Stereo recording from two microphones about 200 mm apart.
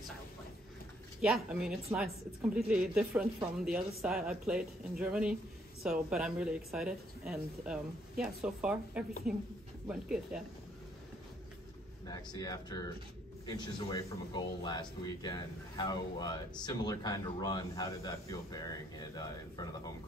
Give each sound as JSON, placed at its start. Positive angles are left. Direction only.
{"t": 1.2, "sound": "speech", "side_deg": 0}
{"t": 12.1, "sound": "a man's voice", "side_deg": 20}